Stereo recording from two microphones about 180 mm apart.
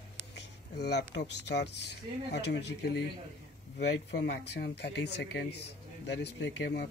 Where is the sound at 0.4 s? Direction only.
70° left (ahead or behind).